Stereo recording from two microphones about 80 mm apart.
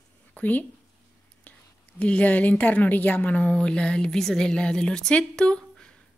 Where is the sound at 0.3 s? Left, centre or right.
Left.